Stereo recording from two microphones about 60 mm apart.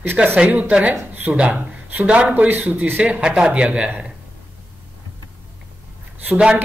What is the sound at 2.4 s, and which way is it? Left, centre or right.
Speech, right.